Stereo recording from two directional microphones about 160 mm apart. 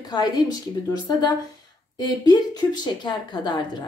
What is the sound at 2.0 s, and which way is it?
A woman's voice, 25° left (ahead or behind).